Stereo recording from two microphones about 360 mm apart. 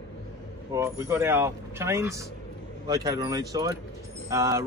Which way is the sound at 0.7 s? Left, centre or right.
Centre.